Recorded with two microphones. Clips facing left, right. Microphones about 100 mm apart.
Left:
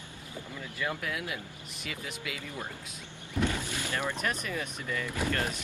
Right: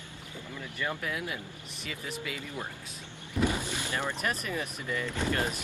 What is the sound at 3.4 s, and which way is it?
Speech, 15° right (ahead or behind).